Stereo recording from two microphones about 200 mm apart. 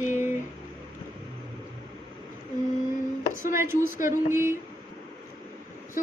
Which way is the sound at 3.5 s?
10° right (ahead or behind).